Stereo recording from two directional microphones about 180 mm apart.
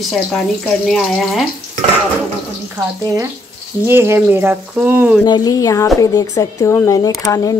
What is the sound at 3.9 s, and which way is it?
Speech, 15° right (ahead or behind).